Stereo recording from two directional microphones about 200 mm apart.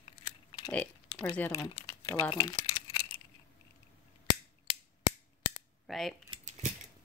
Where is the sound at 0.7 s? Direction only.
5° left (ahead or behind).